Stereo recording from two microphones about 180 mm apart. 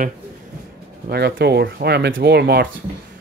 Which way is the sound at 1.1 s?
65° right (ahead or behind).